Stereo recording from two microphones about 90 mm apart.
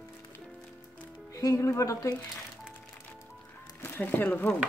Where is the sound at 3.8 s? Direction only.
25° left (ahead or behind).